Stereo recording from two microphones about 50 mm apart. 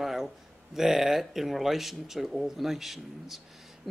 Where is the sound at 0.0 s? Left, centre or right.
Centre.